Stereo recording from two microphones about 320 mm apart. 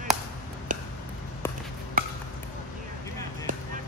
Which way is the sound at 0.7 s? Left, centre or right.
Right.